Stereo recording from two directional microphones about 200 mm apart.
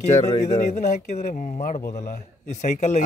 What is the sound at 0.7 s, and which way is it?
A man's voice, 35° left (ahead or behind).